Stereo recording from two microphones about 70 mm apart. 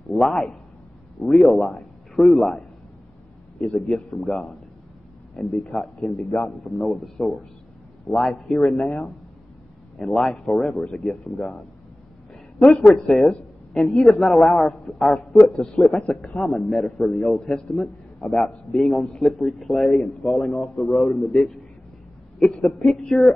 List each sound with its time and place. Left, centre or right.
0.1 s a man's voice: centre
3.9 s a man's voice: centre
5.3 s a man's voice: centre
12.5 s a man's voice: centre
18.8 s a man's voice: centre